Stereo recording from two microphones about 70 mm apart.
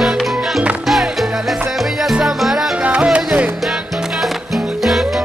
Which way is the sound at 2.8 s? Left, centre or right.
Centre.